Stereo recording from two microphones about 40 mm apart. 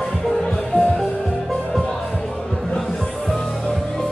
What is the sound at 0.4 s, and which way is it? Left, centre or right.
Music, centre.